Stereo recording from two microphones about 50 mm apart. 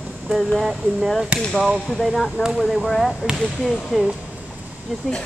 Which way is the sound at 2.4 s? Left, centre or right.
Left.